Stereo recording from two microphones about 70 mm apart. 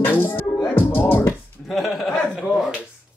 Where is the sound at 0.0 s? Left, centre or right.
Left.